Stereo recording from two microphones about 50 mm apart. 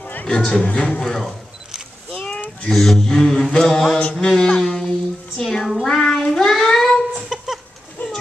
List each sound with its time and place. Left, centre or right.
0.3 s speech: centre
1.0 s speech: centre
2.7 s speech: centre
4.0 s music: centre
5.4 s child singing: centre
7.2 s chicken: centre
8.0 s a sound: left